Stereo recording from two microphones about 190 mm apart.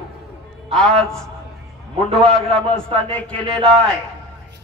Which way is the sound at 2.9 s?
5° left (ahead or behind).